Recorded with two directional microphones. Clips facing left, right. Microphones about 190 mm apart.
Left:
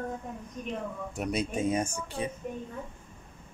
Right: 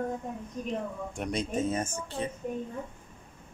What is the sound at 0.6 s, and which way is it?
Speech, 35° right (ahead or behind).